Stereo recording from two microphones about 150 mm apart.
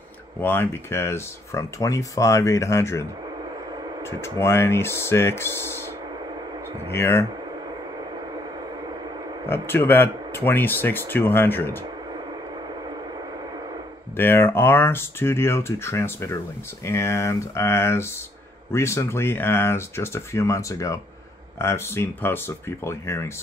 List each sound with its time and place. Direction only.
0.4 s speech: 15° left (ahead or behind)
4.2 s speech: 15° left (ahead or behind)
6.9 s speech: 15° left (ahead or behind)
8.0 s a sound: 30° right (ahead or behind)
9.5 s speech: 15° left (ahead or behind)
14.1 s speech: 15° left (ahead or behind)